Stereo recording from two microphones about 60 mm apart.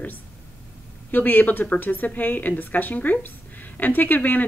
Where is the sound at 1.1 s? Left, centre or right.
Left.